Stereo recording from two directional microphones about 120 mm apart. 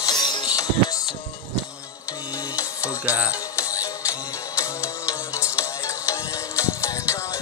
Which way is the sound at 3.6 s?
25° left (ahead or behind).